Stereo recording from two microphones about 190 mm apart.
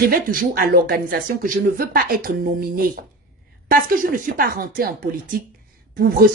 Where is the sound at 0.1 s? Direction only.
50° right (ahead or behind).